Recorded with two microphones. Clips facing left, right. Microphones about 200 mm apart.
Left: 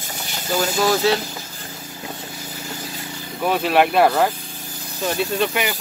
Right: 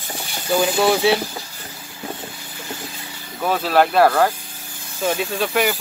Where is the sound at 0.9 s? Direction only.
10° right (ahead or behind).